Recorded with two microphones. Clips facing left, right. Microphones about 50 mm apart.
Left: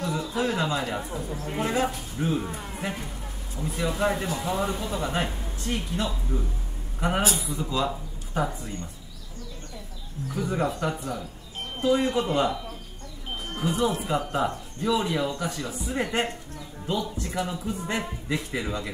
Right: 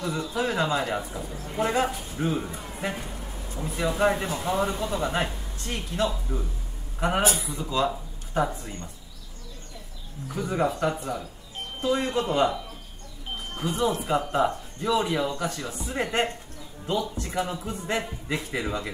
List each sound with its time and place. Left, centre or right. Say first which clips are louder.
0.0 s speech: even; centre
7.2 s speech: right 2 dB; right
7.5 s speech: right 1 dB; centre
10.3 s speech: right 1 dB; centre
13.6 s speech: even; centre